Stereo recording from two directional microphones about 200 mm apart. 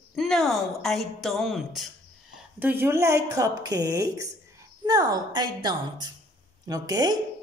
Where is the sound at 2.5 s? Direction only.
10° right (ahead or behind).